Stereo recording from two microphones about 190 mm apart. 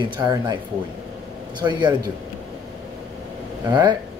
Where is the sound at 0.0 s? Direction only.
25° right (ahead or behind).